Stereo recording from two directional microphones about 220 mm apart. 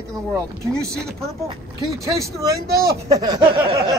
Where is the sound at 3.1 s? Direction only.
20° right (ahead or behind).